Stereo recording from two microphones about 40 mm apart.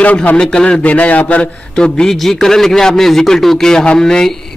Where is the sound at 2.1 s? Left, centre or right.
Centre.